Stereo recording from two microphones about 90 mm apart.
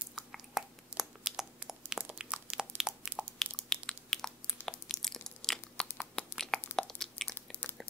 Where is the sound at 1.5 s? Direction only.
10° right (ahead or behind).